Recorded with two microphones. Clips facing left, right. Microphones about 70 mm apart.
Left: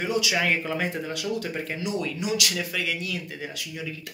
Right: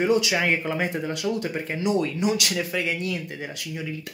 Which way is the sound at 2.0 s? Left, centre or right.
Right.